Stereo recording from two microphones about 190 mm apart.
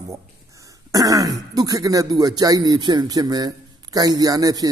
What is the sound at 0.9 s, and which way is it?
Speech, 20° right (ahead or behind).